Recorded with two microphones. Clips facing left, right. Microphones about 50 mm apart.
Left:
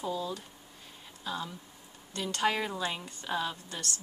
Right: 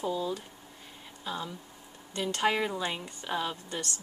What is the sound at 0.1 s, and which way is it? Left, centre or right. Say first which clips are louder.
Speech: right 3 dB; centre.